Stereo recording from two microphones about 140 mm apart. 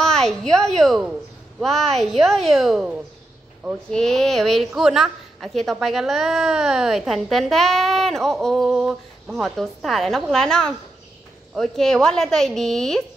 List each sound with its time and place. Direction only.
0.0 s a woman's voice: 5° left (ahead or behind)